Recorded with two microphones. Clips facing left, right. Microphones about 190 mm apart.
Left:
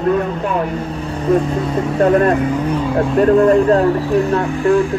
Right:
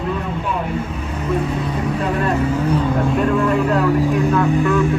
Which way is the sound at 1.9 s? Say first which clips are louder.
Left 9 dB; 45° left (ahead or behind).